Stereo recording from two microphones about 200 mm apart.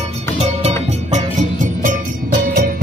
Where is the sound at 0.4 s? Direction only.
35° right (ahead or behind).